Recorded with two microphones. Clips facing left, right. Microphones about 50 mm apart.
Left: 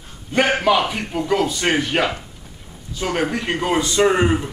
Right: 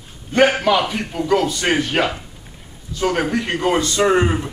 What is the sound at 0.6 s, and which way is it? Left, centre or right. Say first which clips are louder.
A man's voice: even; centre.